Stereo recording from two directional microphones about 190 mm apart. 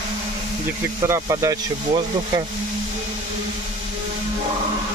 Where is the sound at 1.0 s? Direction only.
15° right (ahead or behind).